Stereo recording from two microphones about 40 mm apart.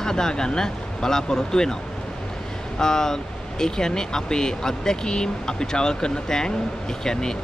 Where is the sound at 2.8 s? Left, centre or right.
Centre.